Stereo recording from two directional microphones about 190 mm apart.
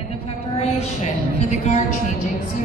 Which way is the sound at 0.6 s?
35° left (ahead or behind).